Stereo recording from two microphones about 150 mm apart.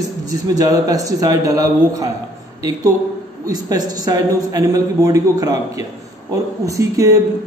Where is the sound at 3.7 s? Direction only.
25° right (ahead or behind).